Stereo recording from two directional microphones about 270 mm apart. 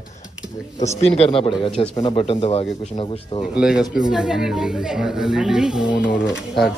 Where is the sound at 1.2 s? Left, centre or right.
Centre.